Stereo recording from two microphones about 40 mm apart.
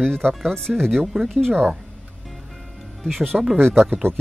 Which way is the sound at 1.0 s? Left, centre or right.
Centre.